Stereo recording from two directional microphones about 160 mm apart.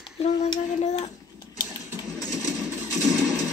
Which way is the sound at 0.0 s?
40° left (ahead or behind).